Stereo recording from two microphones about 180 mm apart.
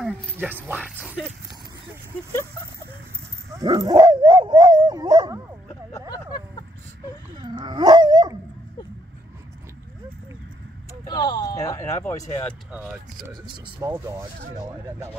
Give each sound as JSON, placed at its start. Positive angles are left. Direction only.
{"t": 0.0, "sound": "speech", "side_deg": -10}
{"t": 3.5, "sound": "dog", "side_deg": -20}
{"t": 5.9, "sound": "a sound", "side_deg": 20}
{"t": 7.4, "sound": "dog", "side_deg": -25}
{"t": 11.1, "sound": "a sound", "side_deg": 25}
{"t": 13.3, "sound": "speech", "side_deg": -15}